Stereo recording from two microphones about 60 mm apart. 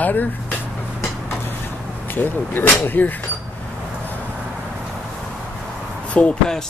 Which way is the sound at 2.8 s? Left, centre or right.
Left.